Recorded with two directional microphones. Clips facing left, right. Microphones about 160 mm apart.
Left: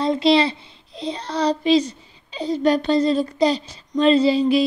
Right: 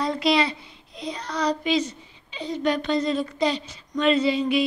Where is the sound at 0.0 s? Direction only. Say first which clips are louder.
Left 5 dB; 25° left (ahead or behind).